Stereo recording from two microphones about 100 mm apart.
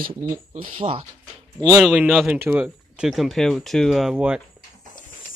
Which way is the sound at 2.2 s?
20° right (ahead or behind).